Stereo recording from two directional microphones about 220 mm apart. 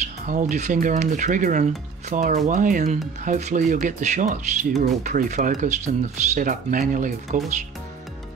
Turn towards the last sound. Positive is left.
turn(degrees=-35)  # may be behind; listen again after turning